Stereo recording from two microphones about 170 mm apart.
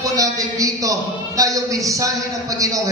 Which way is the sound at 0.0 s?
20° right (ahead or behind).